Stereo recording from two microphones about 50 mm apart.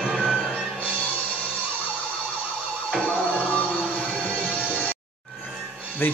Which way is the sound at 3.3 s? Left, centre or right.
Left.